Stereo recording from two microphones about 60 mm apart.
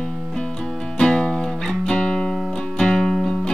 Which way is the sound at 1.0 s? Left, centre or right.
Centre.